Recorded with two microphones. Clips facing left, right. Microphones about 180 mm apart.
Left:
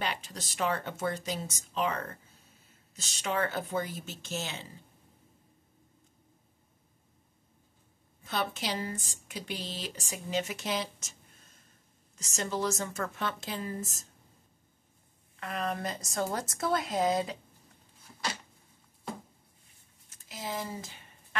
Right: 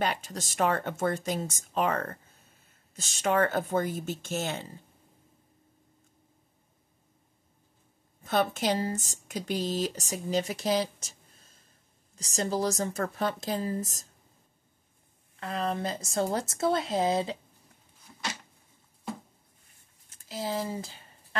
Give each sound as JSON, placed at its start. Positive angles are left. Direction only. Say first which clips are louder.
{"t": 0.0, "sound": "speech", "louder": "right 5 dB", "side_deg": -45}
{"t": 8.2, "sound": "speech", "louder": "right 7 dB", "side_deg": -50}
{"t": 12.2, "sound": "speech", "louder": "right 4 dB", "side_deg": -35}
{"t": 15.4, "sound": "speech", "louder": "right 3 dB", "side_deg": -30}
{"t": 20.2, "sound": "a sound", "louder": "right 5 dB", "side_deg": -30}